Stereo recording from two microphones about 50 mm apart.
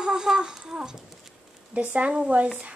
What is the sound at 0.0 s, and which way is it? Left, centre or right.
Speech, centre.